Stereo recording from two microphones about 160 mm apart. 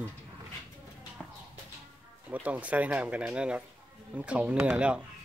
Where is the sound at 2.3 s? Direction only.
10° right (ahead or behind).